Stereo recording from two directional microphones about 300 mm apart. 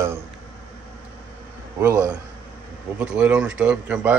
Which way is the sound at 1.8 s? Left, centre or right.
Centre.